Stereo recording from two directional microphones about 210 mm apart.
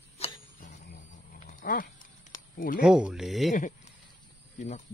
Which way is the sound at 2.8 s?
5° right (ahead or behind).